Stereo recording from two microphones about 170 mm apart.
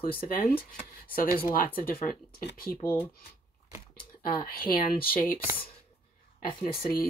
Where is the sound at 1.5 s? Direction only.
55° left (ahead or behind).